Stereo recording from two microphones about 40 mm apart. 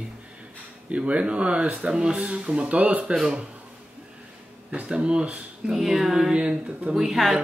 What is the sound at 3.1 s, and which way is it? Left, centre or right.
Speech, right.